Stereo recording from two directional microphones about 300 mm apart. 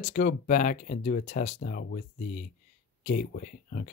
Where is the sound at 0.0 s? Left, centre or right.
Left.